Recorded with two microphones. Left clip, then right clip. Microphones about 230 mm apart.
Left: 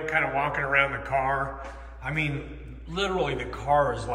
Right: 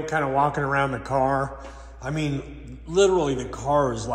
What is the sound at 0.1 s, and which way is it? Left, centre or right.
Speech, centre.